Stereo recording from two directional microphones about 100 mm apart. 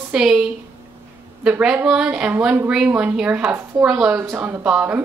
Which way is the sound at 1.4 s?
15° right (ahead or behind).